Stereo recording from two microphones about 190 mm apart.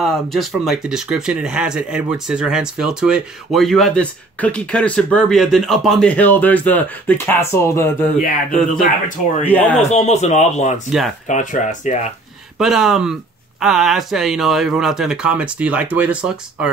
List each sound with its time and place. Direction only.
0.0 s speech: centre (ahead or behind)
8.2 s speech: 45° left (ahead or behind)
9.4 s speech: 10° left (ahead or behind)
9.8 s speech: 35° left (ahead or behind)
12.5 s speech: centre (ahead or behind)